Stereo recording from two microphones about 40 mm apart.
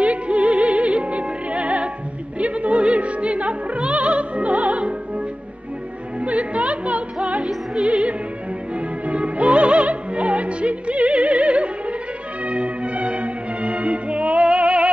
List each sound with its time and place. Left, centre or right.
0.0 s music: right
2.3 s opera: right
6.2 s music: right
7.8 s opera: right
12.4 s music: right